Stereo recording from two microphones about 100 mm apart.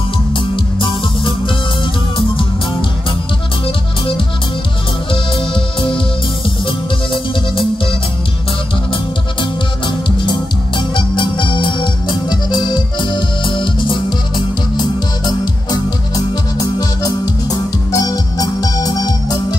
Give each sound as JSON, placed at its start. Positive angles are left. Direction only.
{"t": 0.3, "sound": "music", "side_deg": 60}
{"t": 3.6, "sound": "music", "side_deg": 60}
{"t": 9.4, "sound": "music", "side_deg": 50}